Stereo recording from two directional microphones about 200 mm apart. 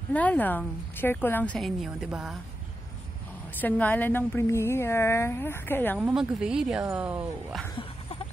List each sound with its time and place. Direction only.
0.1 s a woman's voice: 5° left (ahead or behind)
3.6 s a woman's voice: 10° left (ahead or behind)
5.9 s speech: 5° right (ahead or behind)
7.7 s a sound: 30° left (ahead or behind)